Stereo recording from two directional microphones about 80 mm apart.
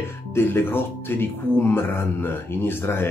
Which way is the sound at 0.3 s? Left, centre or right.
Left.